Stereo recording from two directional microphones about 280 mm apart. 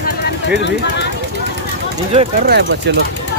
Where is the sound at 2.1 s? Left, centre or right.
Right.